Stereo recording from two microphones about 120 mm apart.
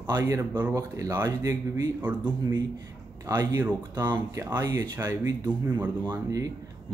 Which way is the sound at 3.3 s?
30° right (ahead or behind).